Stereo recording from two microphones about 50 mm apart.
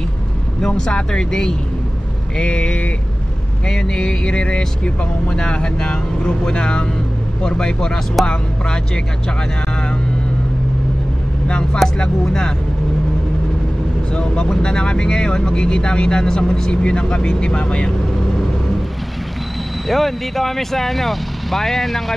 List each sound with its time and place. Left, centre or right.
0.6 s speech: centre
11.4 s speech: centre
14.1 s speech: centre
19.9 s speech: centre